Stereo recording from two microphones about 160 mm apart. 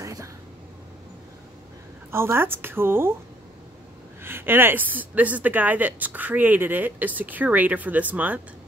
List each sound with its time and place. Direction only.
0.0 s a sound: 20° right (ahead or behind)
2.0 s speech: 15° right (ahead or behind)
4.2 s speech: 15° right (ahead or behind)